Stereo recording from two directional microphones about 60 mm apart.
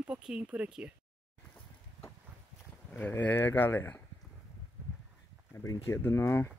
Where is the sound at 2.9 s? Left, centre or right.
Left.